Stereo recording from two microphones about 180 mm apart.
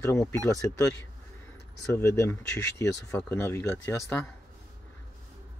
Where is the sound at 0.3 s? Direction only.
15° left (ahead or behind).